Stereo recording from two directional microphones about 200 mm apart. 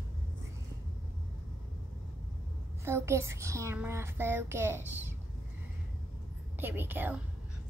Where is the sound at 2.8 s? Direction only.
15° right (ahead or behind).